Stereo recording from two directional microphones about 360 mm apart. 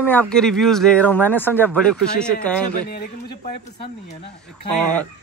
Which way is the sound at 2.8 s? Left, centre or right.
Left.